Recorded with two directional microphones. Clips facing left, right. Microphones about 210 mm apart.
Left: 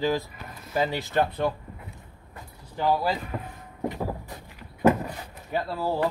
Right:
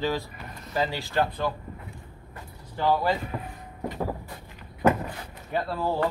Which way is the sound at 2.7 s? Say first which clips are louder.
Even; 10° left (ahead or behind).